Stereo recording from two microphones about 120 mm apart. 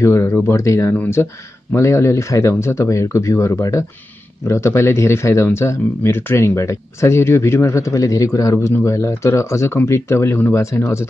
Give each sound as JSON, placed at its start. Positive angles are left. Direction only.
{"t": 0.0, "sound": "speech", "side_deg": 25}